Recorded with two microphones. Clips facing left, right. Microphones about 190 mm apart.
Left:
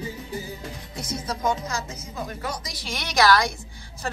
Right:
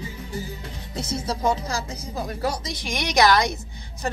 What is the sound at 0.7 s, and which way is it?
Speech, 30° right (ahead or behind).